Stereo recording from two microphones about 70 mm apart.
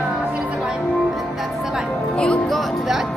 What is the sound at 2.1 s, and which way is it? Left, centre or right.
Music, centre.